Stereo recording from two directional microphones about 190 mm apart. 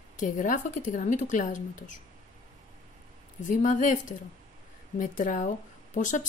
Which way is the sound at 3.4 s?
45° left (ahead or behind).